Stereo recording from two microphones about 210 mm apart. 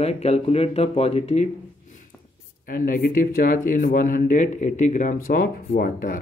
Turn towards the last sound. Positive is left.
turn(degrees=40)  # may be behind; listen again after turning